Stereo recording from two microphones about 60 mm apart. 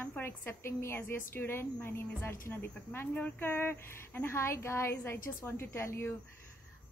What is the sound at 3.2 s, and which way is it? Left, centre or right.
A woman's voice, left.